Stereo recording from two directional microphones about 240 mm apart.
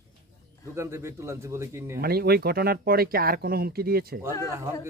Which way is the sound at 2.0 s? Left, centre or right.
Right.